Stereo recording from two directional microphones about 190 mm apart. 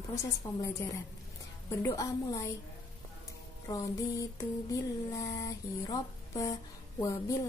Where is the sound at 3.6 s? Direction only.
15° left (ahead or behind).